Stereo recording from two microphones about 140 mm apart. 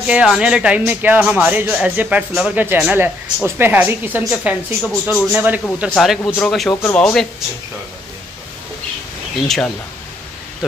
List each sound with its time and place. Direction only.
0.0 s speech: 5° right (ahead or behind)
5.9 s a man's voice: centre (ahead or behind)
6.7 s speech: 20° left (ahead or behind)
7.0 s a man's voice: 5° left (ahead or behind)